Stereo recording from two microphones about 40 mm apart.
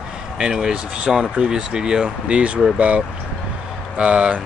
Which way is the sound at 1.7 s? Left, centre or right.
Centre.